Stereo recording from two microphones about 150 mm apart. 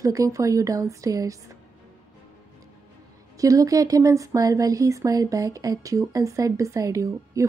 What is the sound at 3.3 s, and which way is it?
Speech, 20° right (ahead or behind).